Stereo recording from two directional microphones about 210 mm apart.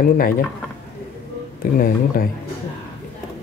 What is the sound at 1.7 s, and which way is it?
Speech, 45° left (ahead or behind).